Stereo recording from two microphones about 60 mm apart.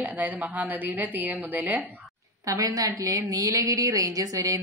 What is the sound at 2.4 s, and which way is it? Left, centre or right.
Speech, right.